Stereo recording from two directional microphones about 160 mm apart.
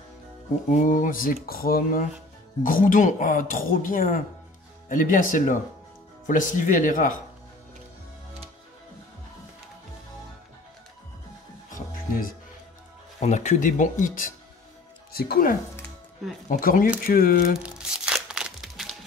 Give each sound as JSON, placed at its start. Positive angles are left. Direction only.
{"t": 0.7, "sound": "speech", "side_deg": 50}
{"t": 11.7, "sound": "music", "side_deg": 60}
{"t": 13.2, "sound": "speech", "side_deg": 45}
{"t": 15.1, "sound": "speech", "side_deg": 70}
{"t": 17.6, "sound": "music", "side_deg": -5}